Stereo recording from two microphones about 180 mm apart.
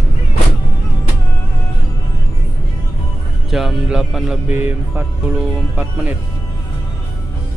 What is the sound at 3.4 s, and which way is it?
Speech, centre (ahead or behind).